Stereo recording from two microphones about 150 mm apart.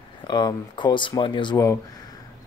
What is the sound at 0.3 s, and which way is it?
Speech, 30° left (ahead or behind).